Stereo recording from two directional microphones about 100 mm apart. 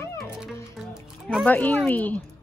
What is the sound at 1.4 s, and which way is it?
Speech, 15° left (ahead or behind).